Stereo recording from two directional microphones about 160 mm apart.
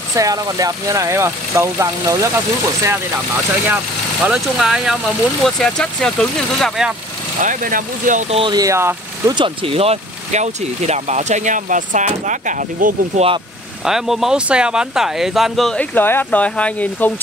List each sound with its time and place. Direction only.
0.1 s speech: 20° right (ahead or behind)
3.7 s speech: 5° right (ahead or behind)
7.4 s speech: 55° right (ahead or behind)
8.4 s speech: 25° right (ahead or behind)
9.3 s speech: 30° right (ahead or behind); by 13.2 s 55° right (ahead or behind)
13.8 s speech: 5° right (ahead or behind)